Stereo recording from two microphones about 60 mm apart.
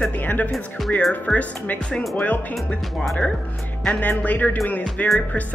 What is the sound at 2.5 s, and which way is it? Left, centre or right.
Speech, centre.